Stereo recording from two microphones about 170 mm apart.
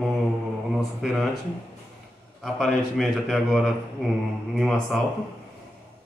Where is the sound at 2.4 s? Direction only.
Centre (ahead or behind).